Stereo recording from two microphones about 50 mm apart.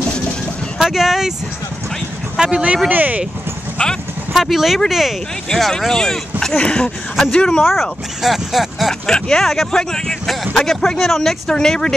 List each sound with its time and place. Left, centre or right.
0.7 s speech: centre
2.3 s speech: centre
2.9 s speech: right
3.8 s a sound: left
4.3 s speech: centre
6.5 s speech: left
7.7 s speech: centre
9.0 s speech: centre